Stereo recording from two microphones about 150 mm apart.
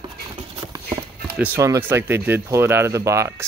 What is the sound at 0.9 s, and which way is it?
Speech, 10° right (ahead or behind).